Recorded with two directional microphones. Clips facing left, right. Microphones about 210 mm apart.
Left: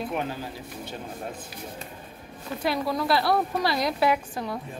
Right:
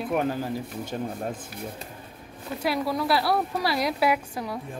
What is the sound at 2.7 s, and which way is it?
A woman's voice, 5° right (ahead or behind).